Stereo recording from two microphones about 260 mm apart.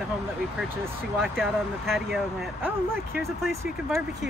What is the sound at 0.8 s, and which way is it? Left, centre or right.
Speech, centre.